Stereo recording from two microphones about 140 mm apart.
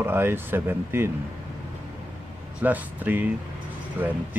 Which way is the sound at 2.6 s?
10° right (ahead or behind).